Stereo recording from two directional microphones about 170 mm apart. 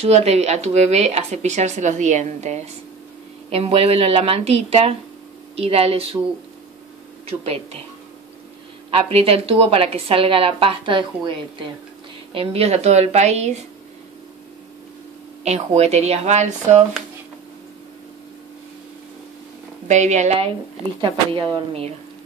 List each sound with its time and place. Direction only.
0.0 s speech: 35° right (ahead or behind)
7.2 s speech: 35° right (ahead or behind)
8.9 s speech: 35° right (ahead or behind)
12.4 s speech: 35° right (ahead or behind)
15.4 s speech: 40° right (ahead or behind)
19.9 s speech: 45° right (ahead or behind)
21.0 s speech: 30° right (ahead or behind)